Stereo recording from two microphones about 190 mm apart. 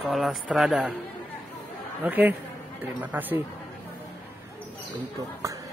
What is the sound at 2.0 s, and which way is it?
A man's voice, 10° right (ahead or behind).